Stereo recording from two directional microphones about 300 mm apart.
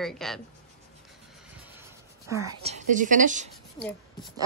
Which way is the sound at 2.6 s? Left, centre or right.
Right.